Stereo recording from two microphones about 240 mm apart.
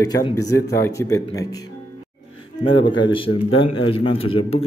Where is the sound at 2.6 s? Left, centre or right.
Centre.